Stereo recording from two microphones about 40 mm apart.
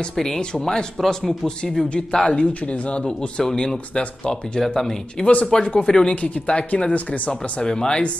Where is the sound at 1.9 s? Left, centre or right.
Left.